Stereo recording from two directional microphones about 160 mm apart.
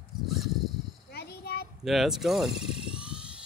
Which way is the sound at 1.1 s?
85° left.